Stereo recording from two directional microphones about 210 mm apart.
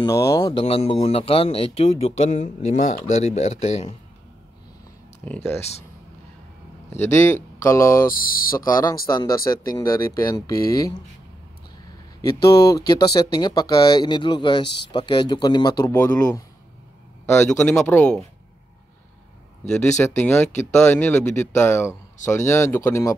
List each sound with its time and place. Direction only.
0.0 s speech: 15° left (ahead or behind)
0.5 s speech: 30° left (ahead or behind)
5.2 s speech: 5° left (ahead or behind)
6.9 s speech: 10° left (ahead or behind)
8.1 s speech: 45° left (ahead or behind)
8.6 s speech: 20° left (ahead or behind)
12.2 s speech: 15° left (ahead or behind)
15.9 s speech: 10° left (ahead or behind)
20.2 s speech: 10° left (ahead or behind)